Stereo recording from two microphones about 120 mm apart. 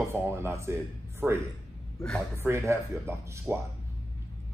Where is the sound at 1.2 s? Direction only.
10° right (ahead or behind).